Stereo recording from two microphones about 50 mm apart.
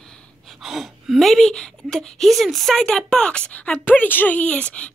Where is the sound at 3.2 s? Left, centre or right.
Left.